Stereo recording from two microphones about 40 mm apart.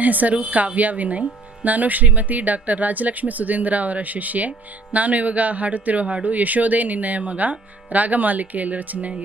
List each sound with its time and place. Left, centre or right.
0.0 s speech: right